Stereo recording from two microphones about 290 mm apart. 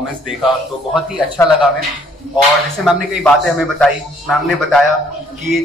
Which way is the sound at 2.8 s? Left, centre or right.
Centre.